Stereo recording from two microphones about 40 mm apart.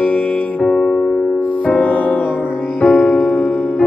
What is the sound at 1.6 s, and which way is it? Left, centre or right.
Music, left.